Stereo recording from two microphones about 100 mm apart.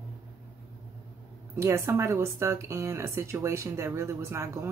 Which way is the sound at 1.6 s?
30° right (ahead or behind).